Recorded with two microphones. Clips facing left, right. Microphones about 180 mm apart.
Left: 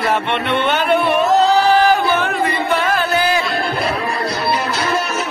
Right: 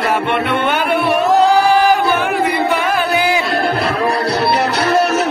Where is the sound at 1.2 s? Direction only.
10° right (ahead or behind).